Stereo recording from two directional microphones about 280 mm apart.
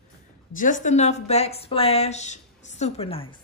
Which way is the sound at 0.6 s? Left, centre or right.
Left.